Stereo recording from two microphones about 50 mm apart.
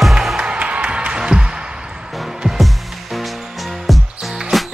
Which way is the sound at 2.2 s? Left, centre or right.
Centre.